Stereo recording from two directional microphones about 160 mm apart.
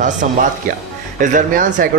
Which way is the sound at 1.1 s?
55° right (ahead or behind).